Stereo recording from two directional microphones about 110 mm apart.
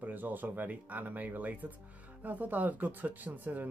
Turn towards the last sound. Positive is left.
turn(degrees=-15)  # may be behind; listen again after turning